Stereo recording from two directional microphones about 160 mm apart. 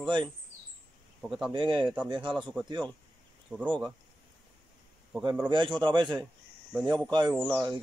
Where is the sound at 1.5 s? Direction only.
30° right (ahead or behind).